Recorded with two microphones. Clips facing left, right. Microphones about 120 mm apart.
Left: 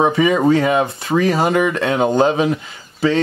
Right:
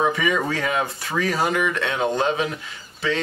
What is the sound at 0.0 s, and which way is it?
Speech, 25° left (ahead or behind).